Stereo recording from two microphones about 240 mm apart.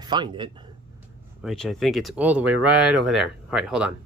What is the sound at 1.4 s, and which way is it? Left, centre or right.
Speech, centre.